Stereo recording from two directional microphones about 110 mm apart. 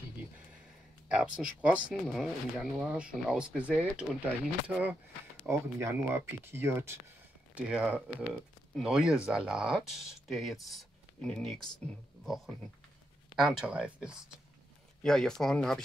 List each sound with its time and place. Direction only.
1.1 s speech: 10° right (ahead or behind)
5.5 s speech: 25° right (ahead or behind)
7.5 s speech: 10° right (ahead or behind); by 11.6 s 5° left (ahead or behind)
13.4 s speech: 5° right (ahead or behind)
15.0 s speech: 5° left (ahead or behind)